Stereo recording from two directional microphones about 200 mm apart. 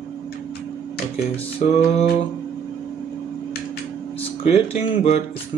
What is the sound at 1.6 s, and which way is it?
Speech, 40° left (ahead or behind).